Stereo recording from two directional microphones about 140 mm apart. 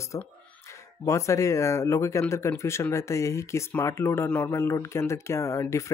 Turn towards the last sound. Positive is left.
turn(degrees=20)  # may be behind; listen again after turning